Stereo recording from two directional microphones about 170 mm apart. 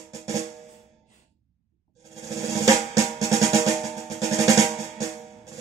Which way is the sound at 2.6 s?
20° right (ahead or behind).